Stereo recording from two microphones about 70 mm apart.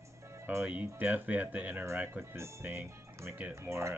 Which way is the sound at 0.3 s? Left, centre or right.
Right.